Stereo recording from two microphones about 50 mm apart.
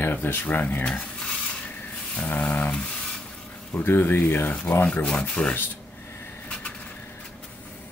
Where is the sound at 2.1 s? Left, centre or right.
Left.